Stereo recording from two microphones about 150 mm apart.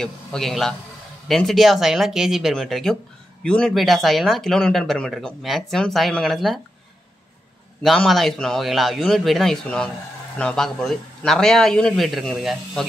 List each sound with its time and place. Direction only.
0.0 s speech: 5° left (ahead or behind)
7.8 s speech: centre (ahead or behind)